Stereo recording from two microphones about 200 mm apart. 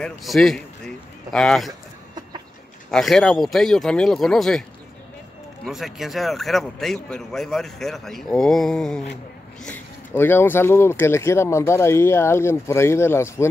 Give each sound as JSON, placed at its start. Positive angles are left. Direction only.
{"t": 0.0, "sound": "speech", "side_deg": 0}
{"t": 1.7, "sound": "a sound", "side_deg": -20}
{"t": 2.9, "sound": "a man's voice", "side_deg": 0}
{"t": 5.7, "sound": "a man's voice", "side_deg": 0}